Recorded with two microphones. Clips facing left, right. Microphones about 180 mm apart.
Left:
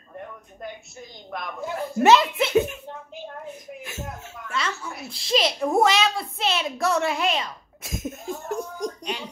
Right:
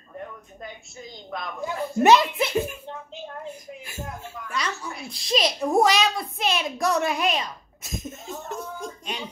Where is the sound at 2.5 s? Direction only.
Centre (ahead or behind).